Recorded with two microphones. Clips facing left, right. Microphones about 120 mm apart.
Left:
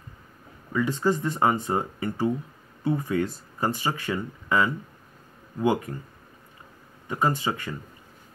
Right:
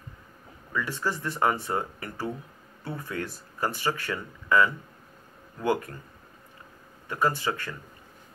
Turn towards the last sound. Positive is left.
turn(degrees=20)  # may be behind; listen again after turning